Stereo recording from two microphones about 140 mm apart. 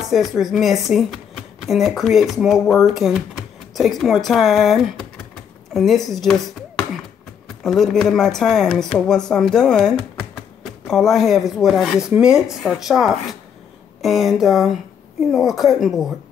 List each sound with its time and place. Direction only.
0.1 s speech: centre (ahead or behind)
7.4 s speech: centre (ahead or behind)